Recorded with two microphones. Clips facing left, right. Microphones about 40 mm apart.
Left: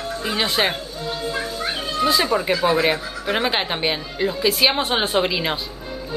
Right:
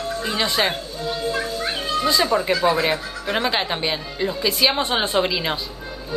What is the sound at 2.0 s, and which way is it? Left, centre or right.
A woman's voice, centre.